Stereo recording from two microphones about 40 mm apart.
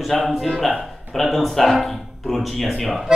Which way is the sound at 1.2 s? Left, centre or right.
Centre.